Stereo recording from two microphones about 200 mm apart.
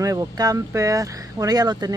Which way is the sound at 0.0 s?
15° right (ahead or behind).